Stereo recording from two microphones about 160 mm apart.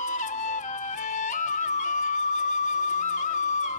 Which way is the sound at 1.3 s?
50° left (ahead or behind).